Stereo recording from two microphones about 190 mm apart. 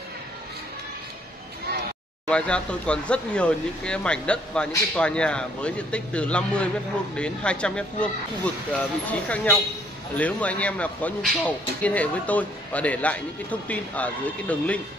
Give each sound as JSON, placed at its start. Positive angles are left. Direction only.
{"t": 2.2, "sound": "a man's voice", "side_deg": 5}